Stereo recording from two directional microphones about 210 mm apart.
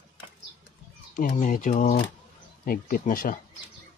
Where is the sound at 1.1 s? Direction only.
40° left (ahead or behind).